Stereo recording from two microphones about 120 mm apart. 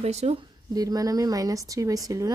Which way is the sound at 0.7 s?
30° right (ahead or behind).